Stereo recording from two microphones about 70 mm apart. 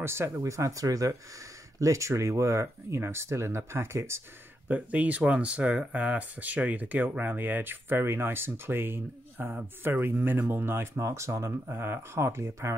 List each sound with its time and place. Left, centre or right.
0.0 s speech: right
4.6 s speech: right
11.6 s speech: right